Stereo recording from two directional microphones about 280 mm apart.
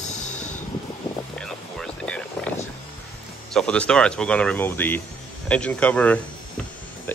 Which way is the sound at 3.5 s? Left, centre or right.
Centre.